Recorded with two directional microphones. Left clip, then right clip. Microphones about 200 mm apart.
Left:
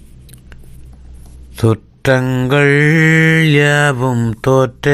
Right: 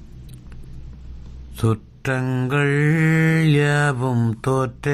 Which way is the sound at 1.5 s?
15° left (ahead or behind).